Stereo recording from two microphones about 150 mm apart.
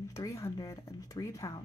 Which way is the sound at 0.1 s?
20° left (ahead or behind).